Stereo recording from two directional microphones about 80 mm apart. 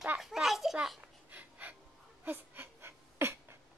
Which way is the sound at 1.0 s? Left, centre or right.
Right.